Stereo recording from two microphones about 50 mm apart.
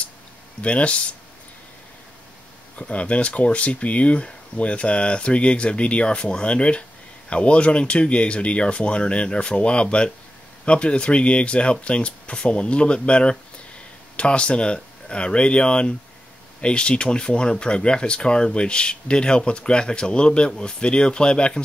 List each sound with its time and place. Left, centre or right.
0.6 s speech: left
2.8 s speech: left